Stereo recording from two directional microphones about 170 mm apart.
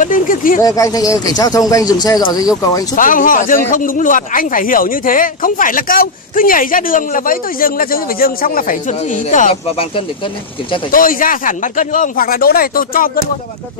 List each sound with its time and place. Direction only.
0.0 s a man's voice: 50° left (ahead or behind)
0.6 s speech: 20° left (ahead or behind)
3.0 s a man's voice: 55° left (ahead or behind)
10.9 s speech: 55° left (ahead or behind)